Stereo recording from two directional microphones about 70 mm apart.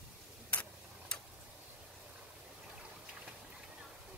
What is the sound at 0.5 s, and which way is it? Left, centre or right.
Tick-tock, centre.